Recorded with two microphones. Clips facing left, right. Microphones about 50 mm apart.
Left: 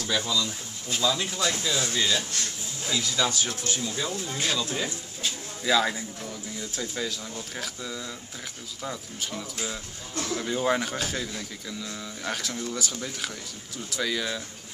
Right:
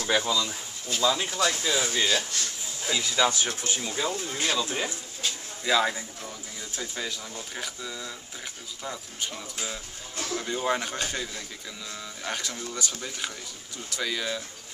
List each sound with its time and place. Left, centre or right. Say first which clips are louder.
0.0 s speech: right 2 dB; right
4.2 s speech: right 1 dB; centre
5.2 s bird: left 1 dB; centre
5.8 s speech: even; centre